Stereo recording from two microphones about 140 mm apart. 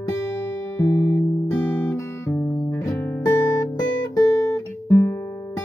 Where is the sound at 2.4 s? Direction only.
10° left (ahead or behind).